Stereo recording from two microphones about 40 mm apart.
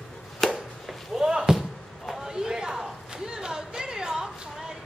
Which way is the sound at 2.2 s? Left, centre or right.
Centre.